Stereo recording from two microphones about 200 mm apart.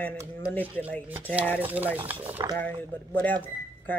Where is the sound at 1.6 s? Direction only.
10° right (ahead or behind).